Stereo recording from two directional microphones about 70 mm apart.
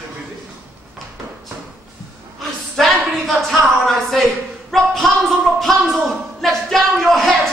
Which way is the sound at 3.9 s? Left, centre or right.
Centre.